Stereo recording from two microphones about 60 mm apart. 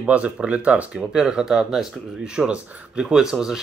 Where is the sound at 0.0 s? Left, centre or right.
Right.